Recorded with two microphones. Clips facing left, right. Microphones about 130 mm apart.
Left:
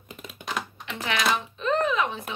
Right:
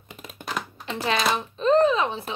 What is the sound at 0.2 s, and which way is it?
Typing, 45° right (ahead or behind).